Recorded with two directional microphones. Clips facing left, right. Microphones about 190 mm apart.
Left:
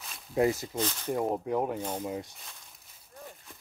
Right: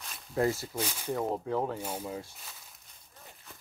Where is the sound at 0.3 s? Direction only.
15° left (ahead or behind).